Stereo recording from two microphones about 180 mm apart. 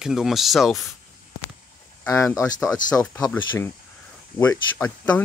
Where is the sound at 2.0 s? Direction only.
20° left (ahead or behind).